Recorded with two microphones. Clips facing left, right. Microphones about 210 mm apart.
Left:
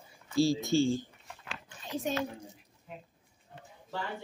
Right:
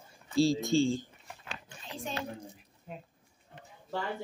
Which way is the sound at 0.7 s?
25° right (ahead or behind).